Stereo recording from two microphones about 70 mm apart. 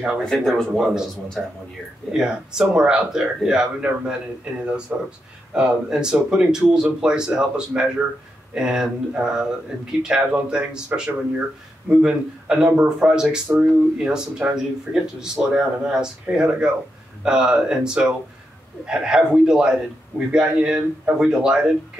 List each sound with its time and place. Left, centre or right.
0.2 s speech: centre; by 11.4 s right
11.9 s speech: centre